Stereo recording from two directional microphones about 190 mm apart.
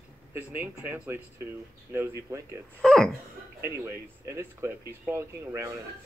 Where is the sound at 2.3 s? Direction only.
15° right (ahead or behind).